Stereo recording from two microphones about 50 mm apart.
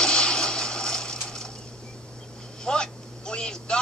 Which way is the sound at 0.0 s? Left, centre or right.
Centre.